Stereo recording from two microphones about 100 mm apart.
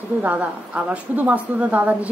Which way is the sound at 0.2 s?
15° right (ahead or behind).